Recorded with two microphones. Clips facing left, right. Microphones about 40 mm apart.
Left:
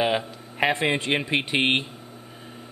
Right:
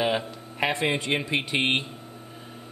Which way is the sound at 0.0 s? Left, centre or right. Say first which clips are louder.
Left 2 dB; centre.